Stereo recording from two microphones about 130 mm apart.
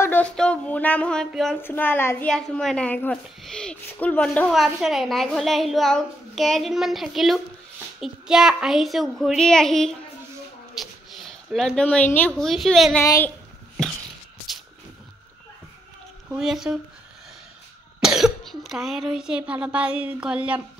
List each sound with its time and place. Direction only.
0.0 s a woman's voice: 10° left (ahead or behind)
1.6 s a woman's voice: 15° left (ahead or behind)
2.2 s a woman's voice: 5° left (ahead or behind)
10.7 s a sound: centre (ahead or behind)
12.4 s a woman's voice: centre (ahead or behind)
13.0 s a child's voice: 25° left (ahead or behind)
16.3 s a woman's voice: 5° right (ahead or behind)
18.0 s speech: 5° right (ahead or behind)